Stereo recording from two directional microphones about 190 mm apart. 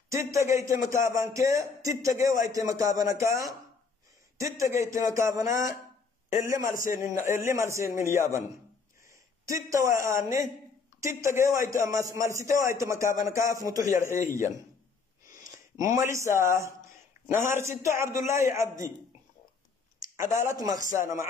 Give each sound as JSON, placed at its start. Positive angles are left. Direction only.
{"t": 0.1, "sound": "a man's voice", "side_deg": -15}
{"t": 15.8, "sound": "a man's voice", "side_deg": -15}
{"t": 20.3, "sound": "a man's voice", "side_deg": -15}